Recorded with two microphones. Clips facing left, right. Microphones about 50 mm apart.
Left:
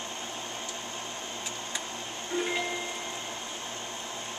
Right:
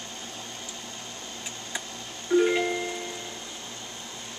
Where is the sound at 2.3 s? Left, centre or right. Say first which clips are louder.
Right 10 dB; left.